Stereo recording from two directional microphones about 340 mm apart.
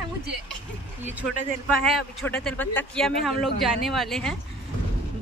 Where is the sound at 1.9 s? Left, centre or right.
Centre.